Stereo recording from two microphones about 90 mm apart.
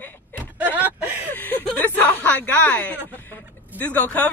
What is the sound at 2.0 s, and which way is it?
Speech, 20° left (ahead or behind).